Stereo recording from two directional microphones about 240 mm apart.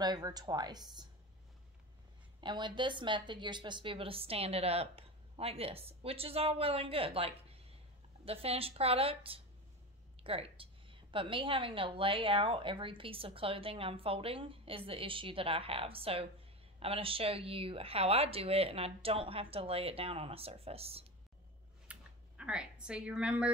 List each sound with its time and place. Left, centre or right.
0.0 s speech: centre
2.4 s a woman's voice: centre
21.9 s a sound: centre
22.4 s a woman's voice: centre